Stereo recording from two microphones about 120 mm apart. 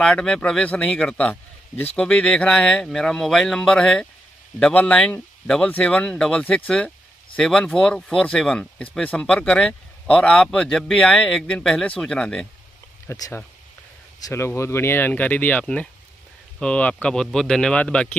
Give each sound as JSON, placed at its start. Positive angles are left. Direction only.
{"t": 0.0, "sound": "a man's voice", "side_deg": 5}
{"t": 13.1, "sound": "a man's voice", "side_deg": 25}